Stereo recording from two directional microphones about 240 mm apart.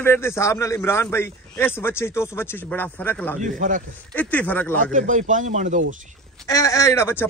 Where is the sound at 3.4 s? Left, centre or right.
Right.